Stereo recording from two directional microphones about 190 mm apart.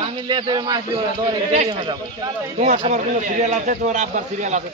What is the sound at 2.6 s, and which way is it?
Speech, 40° right (ahead or behind).